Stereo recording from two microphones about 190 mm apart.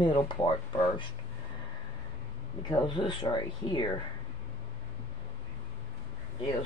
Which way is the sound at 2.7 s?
25° left (ahead or behind).